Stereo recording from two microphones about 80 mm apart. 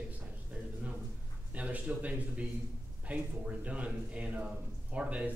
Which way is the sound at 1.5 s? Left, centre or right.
Centre.